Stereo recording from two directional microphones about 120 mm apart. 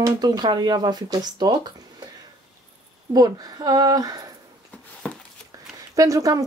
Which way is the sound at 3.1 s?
30° right (ahead or behind).